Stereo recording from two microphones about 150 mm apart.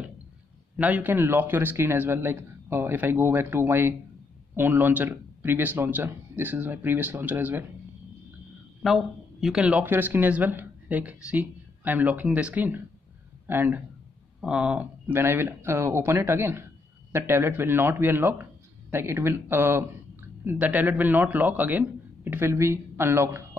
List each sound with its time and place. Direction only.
0.7 s speech: 10° right (ahead or behind)
8.8 s a man's voice: centre (ahead or behind); by 23.4 s 20° right (ahead or behind)